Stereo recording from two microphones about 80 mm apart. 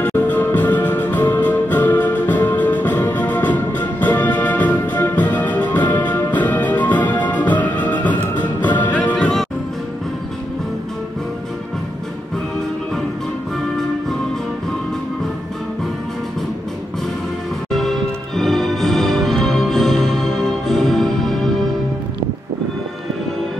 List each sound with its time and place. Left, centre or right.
0.0 s music: left
17.6 s music: centre